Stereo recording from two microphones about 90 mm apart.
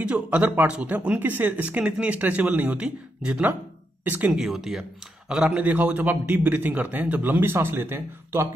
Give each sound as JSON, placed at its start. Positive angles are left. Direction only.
{"t": 0.0, "sound": "speech", "side_deg": -15}
{"t": 4.4, "sound": "a man's voice", "side_deg": -5}